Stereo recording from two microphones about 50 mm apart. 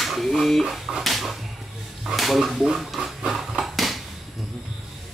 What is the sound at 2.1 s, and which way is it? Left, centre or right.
Speech, centre.